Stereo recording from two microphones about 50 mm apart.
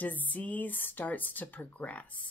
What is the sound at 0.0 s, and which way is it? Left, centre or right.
Speech, left.